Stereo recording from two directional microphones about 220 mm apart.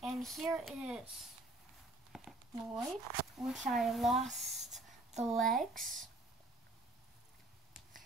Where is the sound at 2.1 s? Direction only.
Centre (ahead or behind).